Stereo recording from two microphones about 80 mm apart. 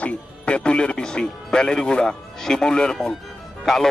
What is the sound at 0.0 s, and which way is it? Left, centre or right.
Speech, centre.